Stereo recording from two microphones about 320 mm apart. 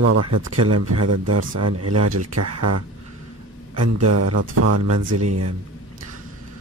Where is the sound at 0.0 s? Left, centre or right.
Right.